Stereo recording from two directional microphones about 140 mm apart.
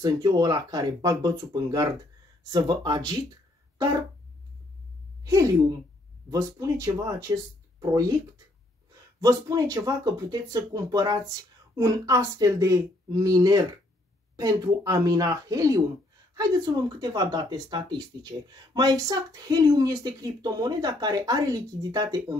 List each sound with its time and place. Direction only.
0.0 s speech: 30° right (ahead or behind)
5.2 s a woman's voice: 25° right (ahead or behind)
9.2 s speech: 25° right (ahead or behind)